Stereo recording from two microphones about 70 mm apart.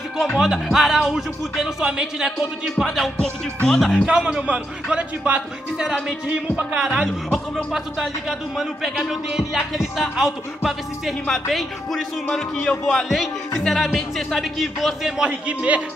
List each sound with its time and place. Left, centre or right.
0.4 s speech: centre
3.6 s speech: centre
3.9 s speech: centre